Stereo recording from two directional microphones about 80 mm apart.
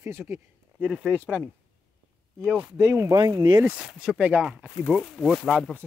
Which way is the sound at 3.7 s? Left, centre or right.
Centre.